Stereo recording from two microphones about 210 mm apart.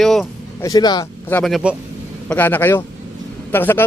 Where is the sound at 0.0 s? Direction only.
Centre (ahead or behind).